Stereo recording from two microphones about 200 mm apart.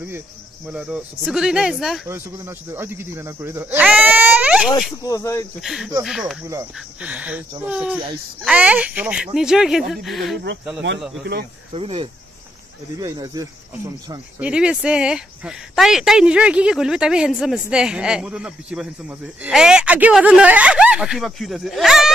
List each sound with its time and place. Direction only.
0.7 s speech: 5° right (ahead or behind)
5.0 s speech: 15° left (ahead or behind)
5.6 s speech: centre (ahead or behind)
6.4 s cricket: 10° right (ahead or behind)
7.6 s speech: 5° right (ahead or behind)
11.7 s cricket: 30° right (ahead or behind)
14.4 s speech: 5° right (ahead or behind)